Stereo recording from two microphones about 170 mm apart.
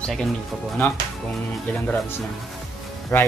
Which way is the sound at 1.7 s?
5° left (ahead or behind).